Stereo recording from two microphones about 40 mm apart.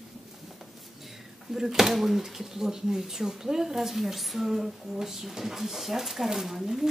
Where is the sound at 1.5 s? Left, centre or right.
Centre.